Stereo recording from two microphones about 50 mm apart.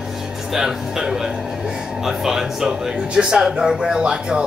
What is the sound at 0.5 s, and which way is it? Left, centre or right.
Speech, centre.